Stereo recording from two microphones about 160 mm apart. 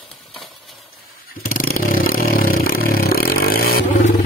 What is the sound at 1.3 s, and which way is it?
Vehicle, 60° left (ahead or behind).